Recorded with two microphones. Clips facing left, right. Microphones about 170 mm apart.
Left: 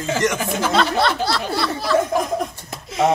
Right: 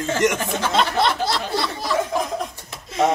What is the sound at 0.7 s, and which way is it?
A man's voice, 20° right (ahead or behind).